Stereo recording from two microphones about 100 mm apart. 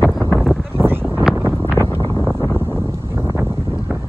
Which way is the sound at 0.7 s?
20° right (ahead or behind).